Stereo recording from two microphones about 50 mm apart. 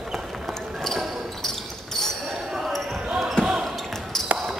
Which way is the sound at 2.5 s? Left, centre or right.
Centre.